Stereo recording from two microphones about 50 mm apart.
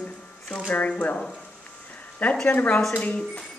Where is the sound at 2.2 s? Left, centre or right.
Left.